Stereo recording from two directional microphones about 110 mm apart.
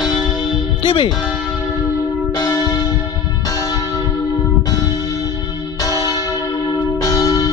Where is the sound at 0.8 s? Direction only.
50° left (ahead or behind).